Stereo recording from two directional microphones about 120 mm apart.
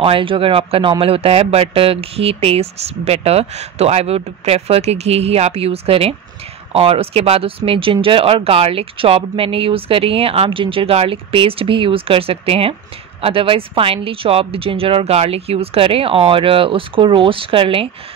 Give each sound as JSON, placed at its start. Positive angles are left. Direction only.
{"t": 0.0, "sound": "speech", "side_deg": -45}